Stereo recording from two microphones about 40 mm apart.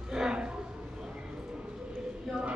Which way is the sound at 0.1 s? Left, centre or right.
Centre.